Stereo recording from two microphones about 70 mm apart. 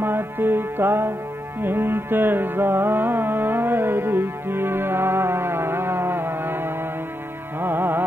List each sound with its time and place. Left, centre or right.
0.0 s music: right